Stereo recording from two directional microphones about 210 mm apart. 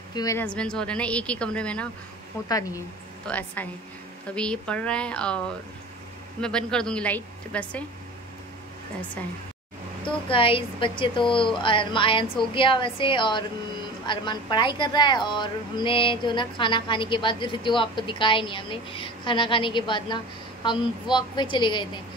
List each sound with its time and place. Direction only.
0.1 s speech: 15° left (ahead or behind)
2.4 s speech: 15° left (ahead or behind)
6.4 s speech: 5° left (ahead or behind)
10.3 s a woman's voice: 25° left (ahead or behind)